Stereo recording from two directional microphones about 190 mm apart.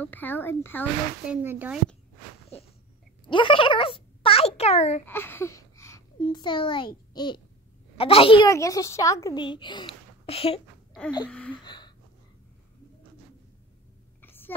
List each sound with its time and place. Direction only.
0.0 s a woman's voice: 10° left (ahead or behind)
1.3 s speech: 10° right (ahead or behind)
3.3 s a child's voice: 25° left (ahead or behind)
5.0 s a child's voice: 10° left (ahead or behind); by 8.5 s 30° left (ahead or behind)
8.5 s a woman's voice: 15° left (ahead or behind)
11.2 s a woman's voice: 5° left (ahead or behind)
11.6 s gasp: 25° left (ahead or behind)
14.2 s a sound: 10° left (ahead or behind)